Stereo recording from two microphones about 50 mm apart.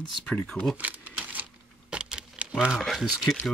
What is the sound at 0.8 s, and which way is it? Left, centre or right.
Speech, right.